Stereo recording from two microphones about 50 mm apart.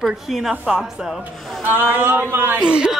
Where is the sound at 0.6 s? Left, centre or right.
Centre.